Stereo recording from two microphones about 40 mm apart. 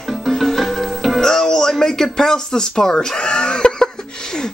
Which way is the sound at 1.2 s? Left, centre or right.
Centre.